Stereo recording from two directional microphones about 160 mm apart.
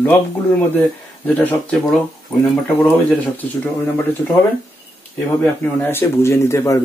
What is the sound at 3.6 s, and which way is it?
Speech, 10° left (ahead or behind).